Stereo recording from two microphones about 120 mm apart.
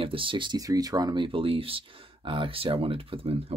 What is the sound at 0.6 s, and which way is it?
Speech, 30° right (ahead or behind).